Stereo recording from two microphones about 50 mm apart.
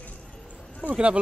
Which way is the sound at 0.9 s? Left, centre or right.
Right.